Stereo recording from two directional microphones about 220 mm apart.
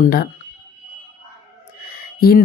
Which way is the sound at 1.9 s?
45° left (ahead or behind).